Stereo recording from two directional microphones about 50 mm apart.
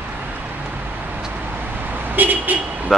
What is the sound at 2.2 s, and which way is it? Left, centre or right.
Vehicle, right.